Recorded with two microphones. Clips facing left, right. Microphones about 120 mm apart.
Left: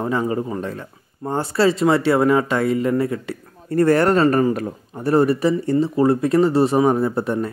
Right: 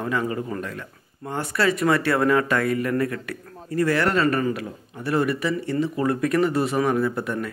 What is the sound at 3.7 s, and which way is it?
A man's voice, 45° left (ahead or behind).